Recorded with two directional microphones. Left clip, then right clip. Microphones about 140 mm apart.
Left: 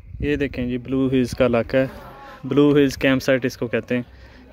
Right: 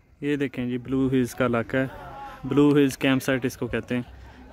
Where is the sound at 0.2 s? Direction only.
5° left (ahead or behind).